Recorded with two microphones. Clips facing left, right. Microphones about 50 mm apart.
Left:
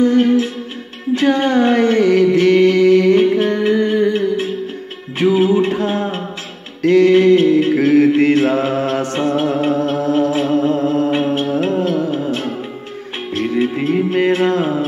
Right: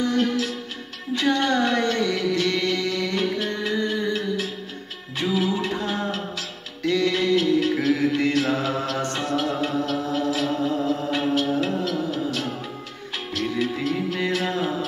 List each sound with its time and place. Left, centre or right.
0.0 s music: left
1.4 s a sound: left
2.0 s music: left
5.9 s a sound: left
6.8 s music: left
7.1 s mantra: left
9.1 s music: left
10.7 s humming: left
11.1 s music: left